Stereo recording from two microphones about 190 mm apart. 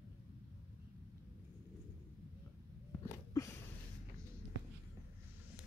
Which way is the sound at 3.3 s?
15° left (ahead or behind).